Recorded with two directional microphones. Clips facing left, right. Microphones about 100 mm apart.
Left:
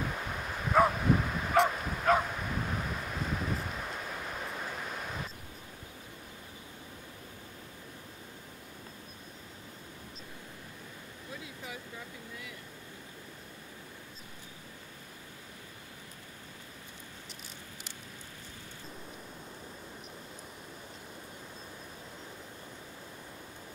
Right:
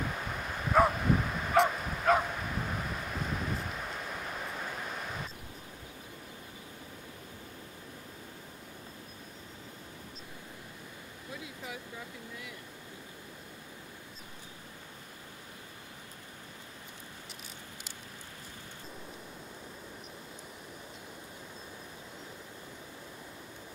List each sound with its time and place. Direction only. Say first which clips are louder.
0.1 s bow-wow: even; centre (ahead or behind)